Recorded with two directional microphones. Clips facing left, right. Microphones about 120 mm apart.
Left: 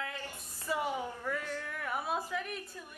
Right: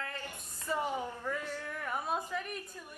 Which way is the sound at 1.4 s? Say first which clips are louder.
Left 1 dB; 10° right (ahead or behind).